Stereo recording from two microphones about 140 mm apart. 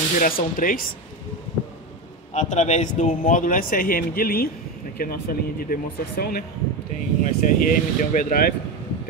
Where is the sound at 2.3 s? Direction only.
55° left (ahead or behind); by 6.4 s 90° left.